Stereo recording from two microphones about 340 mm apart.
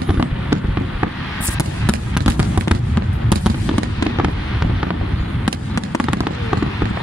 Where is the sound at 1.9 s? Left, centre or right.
Centre.